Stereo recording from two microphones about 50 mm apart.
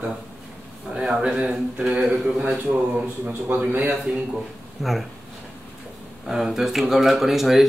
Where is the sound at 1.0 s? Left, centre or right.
Centre.